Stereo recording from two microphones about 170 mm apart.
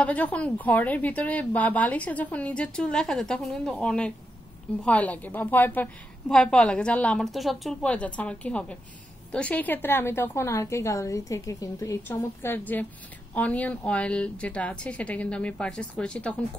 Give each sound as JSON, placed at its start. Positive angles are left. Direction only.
{"t": 0.0, "sound": "a woman's voice", "side_deg": 10}